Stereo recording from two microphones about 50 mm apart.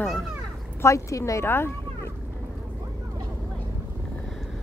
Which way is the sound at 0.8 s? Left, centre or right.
Left.